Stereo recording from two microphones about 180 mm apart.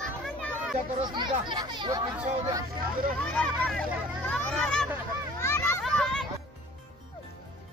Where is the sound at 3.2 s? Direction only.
5° left (ahead or behind).